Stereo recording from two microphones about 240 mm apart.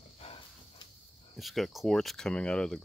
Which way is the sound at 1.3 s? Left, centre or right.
Centre.